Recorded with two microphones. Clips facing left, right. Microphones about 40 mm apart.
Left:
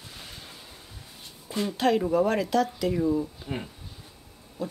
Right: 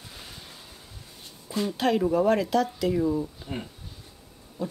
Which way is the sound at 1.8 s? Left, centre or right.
Centre.